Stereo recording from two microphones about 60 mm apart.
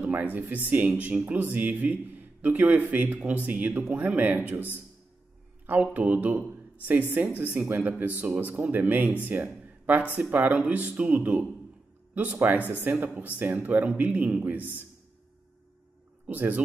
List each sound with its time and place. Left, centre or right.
0.1 s a man's voice: right
5.7 s a man's voice: right
8.0 s a man's voice: right
9.5 s a sound: right
10.1 s a man's voice: right
16.3 s a man's voice: right